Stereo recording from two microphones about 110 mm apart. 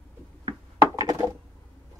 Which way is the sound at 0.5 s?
35° right (ahead or behind).